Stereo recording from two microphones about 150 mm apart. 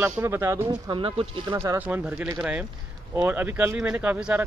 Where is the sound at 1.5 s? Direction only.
15° right (ahead or behind).